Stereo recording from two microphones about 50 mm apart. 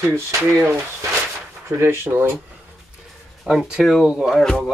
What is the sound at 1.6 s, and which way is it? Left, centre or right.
Speech, right.